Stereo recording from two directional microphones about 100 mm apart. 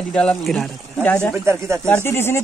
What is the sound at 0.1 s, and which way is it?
Speech, 5° left (ahead or behind).